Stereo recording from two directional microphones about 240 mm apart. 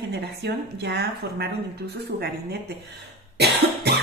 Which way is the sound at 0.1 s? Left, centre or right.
Right.